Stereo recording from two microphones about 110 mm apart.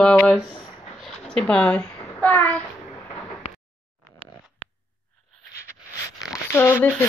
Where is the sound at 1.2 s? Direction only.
5° left (ahead or behind).